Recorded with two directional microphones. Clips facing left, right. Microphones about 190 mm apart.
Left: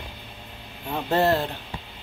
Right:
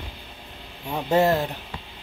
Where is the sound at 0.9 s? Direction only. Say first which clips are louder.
Right 2 dB; 15° right (ahead or behind).